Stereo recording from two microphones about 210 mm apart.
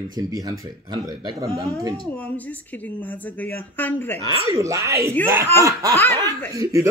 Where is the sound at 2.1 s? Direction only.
10° left (ahead or behind).